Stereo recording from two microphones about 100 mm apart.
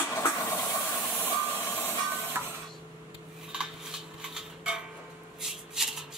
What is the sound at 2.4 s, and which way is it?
Printer, 20° right (ahead or behind).